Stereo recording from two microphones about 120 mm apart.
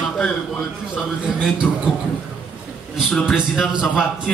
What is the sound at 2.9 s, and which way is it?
A man's voice, centre (ahead or behind).